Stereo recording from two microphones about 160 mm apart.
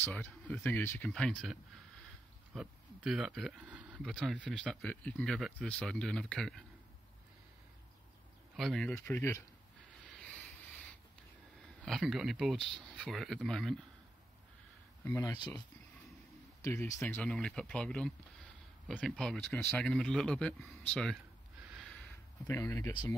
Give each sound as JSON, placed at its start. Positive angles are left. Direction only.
{"t": 0.0, "sound": "speech", "side_deg": 10}
{"t": 2.5, "sound": "speech", "side_deg": -5}
{"t": 8.5, "sound": "speech", "side_deg": 0}
{"t": 8.9, "sound": "speech", "side_deg": 15}
{"t": 10.1, "sound": "a sound", "side_deg": 5}
{"t": 11.8, "sound": "speech", "side_deg": 0}
{"t": 15.0, "sound": "speech", "side_deg": 15}
{"t": 16.6, "sound": "speech", "side_deg": 20}
{"t": 17.1, "sound": "speech", "side_deg": 5}
{"t": 22.5, "sound": "speech", "side_deg": 15}